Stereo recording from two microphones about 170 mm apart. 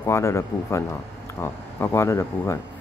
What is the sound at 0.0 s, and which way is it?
Speech, 15° left (ahead or behind).